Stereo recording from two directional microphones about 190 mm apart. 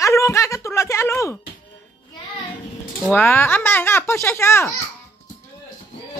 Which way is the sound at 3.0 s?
10° left (ahead or behind).